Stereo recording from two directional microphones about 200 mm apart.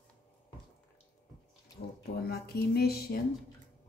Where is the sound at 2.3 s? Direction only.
50° left (ahead or behind).